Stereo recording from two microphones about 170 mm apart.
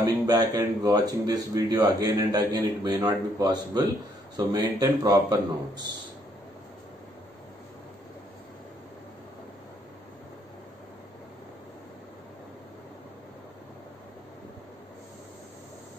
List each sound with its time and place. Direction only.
0.0 s speech: 25° right (ahead or behind)